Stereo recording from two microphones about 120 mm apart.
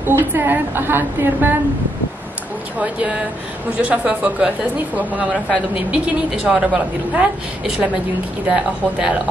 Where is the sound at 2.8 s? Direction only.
10° right (ahead or behind).